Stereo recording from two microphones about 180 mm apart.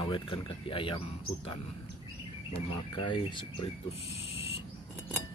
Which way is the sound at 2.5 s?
25° left (ahead or behind).